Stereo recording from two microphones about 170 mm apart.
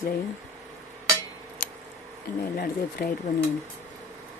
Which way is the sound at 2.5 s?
60° left (ahead or behind).